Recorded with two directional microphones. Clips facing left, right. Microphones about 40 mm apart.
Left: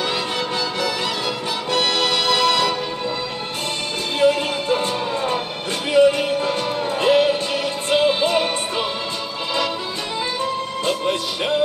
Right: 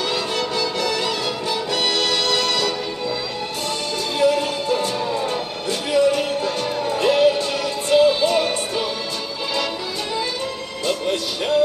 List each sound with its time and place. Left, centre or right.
0.1 s music: centre
4.2 s music: left
10.9 s music: left